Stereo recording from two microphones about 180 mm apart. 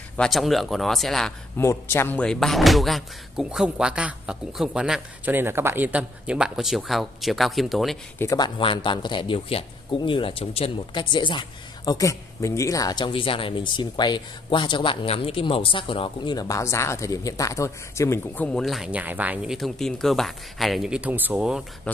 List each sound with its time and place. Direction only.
0.2 s speech: centre (ahead or behind)
1.6 s speech: 15° left (ahead or behind)
8.2 s speech: 15° left (ahead or behind)
8.5 s a man's voice: 25° left (ahead or behind); by 21.6 s 5° right (ahead or behind)
21.9 s speech: 10° left (ahead or behind)